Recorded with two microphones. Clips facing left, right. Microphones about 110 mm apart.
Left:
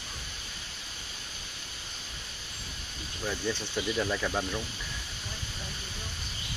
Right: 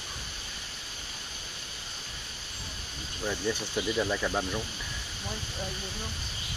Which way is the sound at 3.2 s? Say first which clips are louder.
Right 2 dB; 5° right (ahead or behind).